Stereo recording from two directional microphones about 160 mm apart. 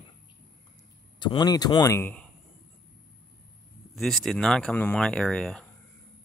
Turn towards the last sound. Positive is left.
turn(degrees=5)  # may be behind; listen again after turning